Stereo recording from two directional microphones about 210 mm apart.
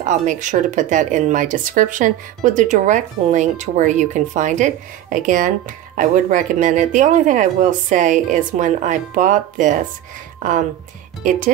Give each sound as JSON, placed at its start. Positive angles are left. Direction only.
{"t": 0.0, "sound": "speech", "side_deg": -35}
{"t": 11.2, "sound": "speech", "side_deg": -40}